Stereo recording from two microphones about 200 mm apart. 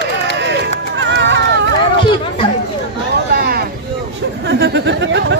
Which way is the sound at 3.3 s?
50° right (ahead or behind).